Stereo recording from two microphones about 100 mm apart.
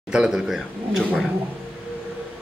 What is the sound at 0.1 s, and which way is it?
A man's voice, 5° right (ahead or behind).